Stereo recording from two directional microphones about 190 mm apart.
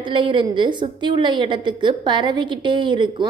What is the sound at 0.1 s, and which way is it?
A woman's voice, 25° right (ahead or behind).